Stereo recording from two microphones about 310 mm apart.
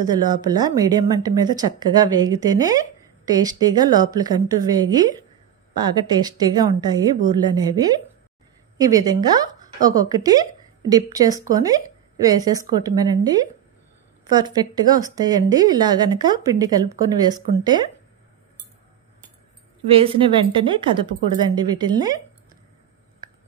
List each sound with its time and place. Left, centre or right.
0.0 s speech: centre
19.9 s speech: centre